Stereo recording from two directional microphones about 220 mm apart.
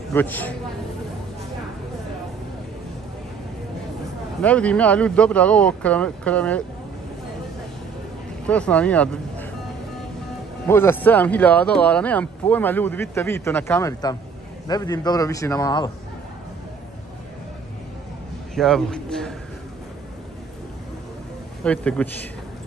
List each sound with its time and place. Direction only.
0.1 s speech: 10° left (ahead or behind)
4.4 s speech: 5° left (ahead or behind)
8.5 s speech: 5° left (ahead or behind)
10.7 s speech: 10° left (ahead or behind)
18.5 s speech: centre (ahead or behind)
21.6 s speech: 5° left (ahead or behind)